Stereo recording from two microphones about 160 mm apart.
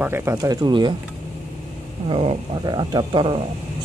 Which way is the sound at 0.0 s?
15° right (ahead or behind).